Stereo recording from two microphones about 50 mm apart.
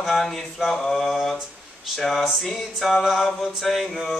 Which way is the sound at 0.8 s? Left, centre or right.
Centre.